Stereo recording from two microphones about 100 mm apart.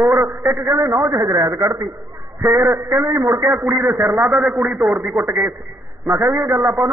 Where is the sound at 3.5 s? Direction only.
20° right (ahead or behind).